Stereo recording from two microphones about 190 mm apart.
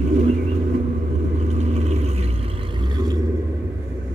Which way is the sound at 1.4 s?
35° right (ahead or behind).